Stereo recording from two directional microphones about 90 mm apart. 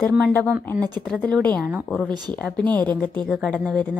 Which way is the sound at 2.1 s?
50° right (ahead or behind).